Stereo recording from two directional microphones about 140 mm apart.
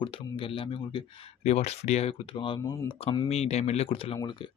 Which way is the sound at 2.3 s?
35° left (ahead or behind).